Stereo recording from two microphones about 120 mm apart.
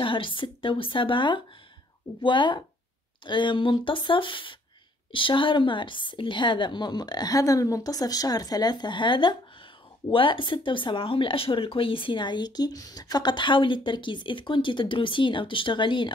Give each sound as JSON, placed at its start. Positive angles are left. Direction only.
{"t": 0.0, "sound": "a woman's voice", "side_deg": 45}